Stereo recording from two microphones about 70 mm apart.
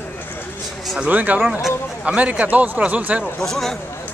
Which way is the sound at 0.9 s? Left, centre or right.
Right.